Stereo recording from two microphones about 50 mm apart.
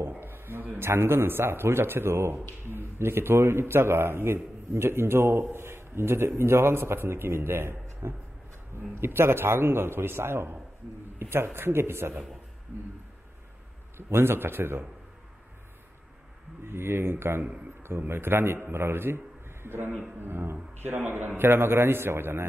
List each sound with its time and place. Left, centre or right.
0.1 s a man's voice: right
13.9 s a man's voice: right
16.6 s a man's voice: right